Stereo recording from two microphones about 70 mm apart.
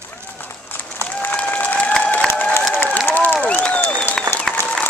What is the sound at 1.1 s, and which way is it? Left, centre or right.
Applause, left.